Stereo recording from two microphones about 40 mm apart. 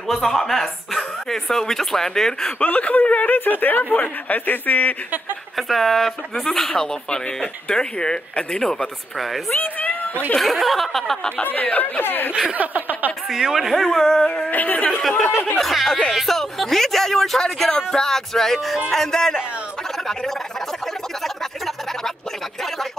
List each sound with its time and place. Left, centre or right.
0.1 s speech: centre
2.6 s speech: left
3.3 s speech: left
5.6 s speech: centre
9.6 s a sound: left
10.4 s speech: centre
12.0 s speech: left
12.5 s a sound: right
13.3 s speech: centre
13.8 s speech: centre
14.5 s speech: left
15.5 s speech: centre
20.8 s a sound: centre